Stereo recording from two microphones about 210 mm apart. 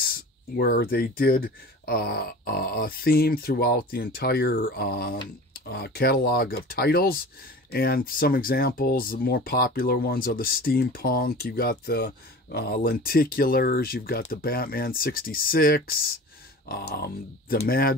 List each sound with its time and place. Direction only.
0.0 s speech: 45° left (ahead or behind)